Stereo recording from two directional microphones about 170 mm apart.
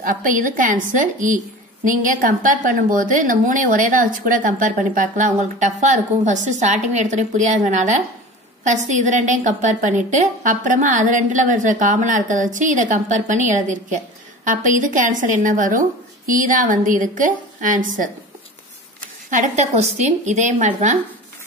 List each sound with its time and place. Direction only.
0.0 s a woman's voice: 50° right (ahead or behind)